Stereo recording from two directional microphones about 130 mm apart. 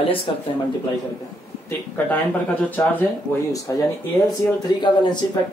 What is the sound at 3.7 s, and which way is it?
Speech, 25° left (ahead or behind).